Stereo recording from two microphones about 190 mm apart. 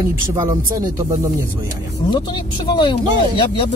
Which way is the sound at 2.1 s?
25° left (ahead or behind).